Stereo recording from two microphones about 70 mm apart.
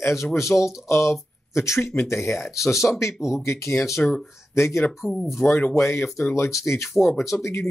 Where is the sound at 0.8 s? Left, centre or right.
Left.